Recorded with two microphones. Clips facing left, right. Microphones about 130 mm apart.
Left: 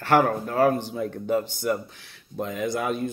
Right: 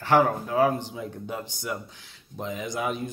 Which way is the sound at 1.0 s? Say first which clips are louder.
Left 8 dB; 60° left (ahead or behind).